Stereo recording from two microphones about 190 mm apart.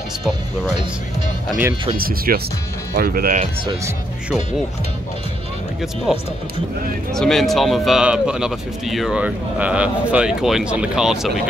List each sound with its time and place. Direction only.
2.0 s speech: 50° right (ahead or behind)
7.2 s speech: centre (ahead or behind)